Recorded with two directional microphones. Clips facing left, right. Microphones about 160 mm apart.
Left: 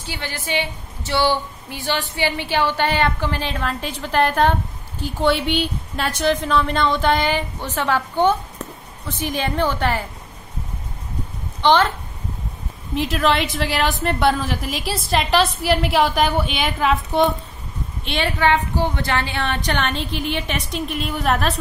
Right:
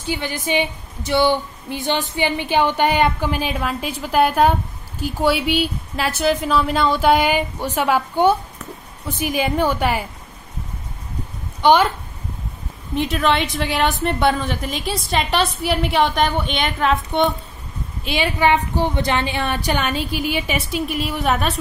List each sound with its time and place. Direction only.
0.0 s a woman's voice: 15° right (ahead or behind)
11.6 s a woman's voice: 10° right (ahead or behind)
12.9 s a woman's voice: centre (ahead or behind)
18.4 s a woman's voice: 15° right (ahead or behind); by 21.5 s centre (ahead or behind)